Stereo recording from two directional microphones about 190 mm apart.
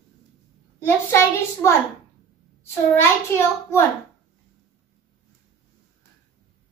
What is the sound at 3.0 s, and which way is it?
Speech, 15° left (ahead or behind).